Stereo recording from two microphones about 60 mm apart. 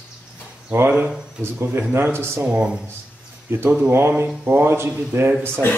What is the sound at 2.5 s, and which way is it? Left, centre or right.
Speech, centre.